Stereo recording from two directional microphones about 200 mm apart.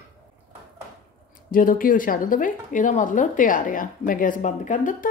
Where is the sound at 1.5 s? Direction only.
45° left (ahead or behind).